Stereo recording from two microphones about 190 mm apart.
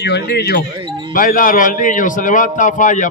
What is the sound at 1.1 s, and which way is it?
A man's voice, 45° left (ahead or behind).